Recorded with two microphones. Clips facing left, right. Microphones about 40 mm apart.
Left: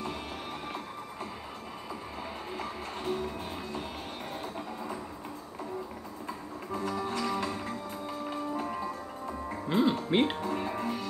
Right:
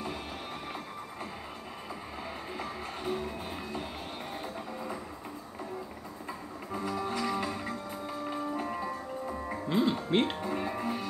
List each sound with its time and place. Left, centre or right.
2.5 s music: centre
6.9 s music: centre
9.7 s music: centre
10.1 s speech: centre
10.4 s music: centre